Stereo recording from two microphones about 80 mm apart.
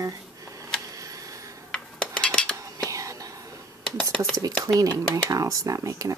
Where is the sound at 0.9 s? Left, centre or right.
Right.